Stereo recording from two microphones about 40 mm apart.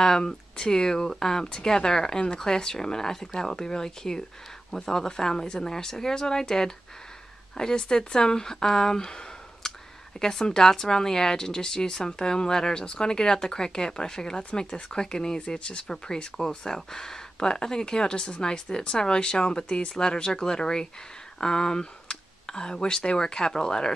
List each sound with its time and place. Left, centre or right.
0.0 s speech: centre